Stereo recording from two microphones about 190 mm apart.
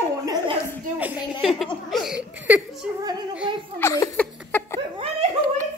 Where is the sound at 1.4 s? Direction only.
Centre (ahead or behind).